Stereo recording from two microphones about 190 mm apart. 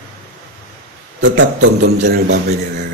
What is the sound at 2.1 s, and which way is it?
Speech, 60° right (ahead or behind).